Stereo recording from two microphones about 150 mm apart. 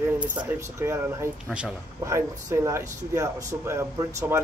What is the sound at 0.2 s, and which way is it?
Speech, 10° right (ahead or behind).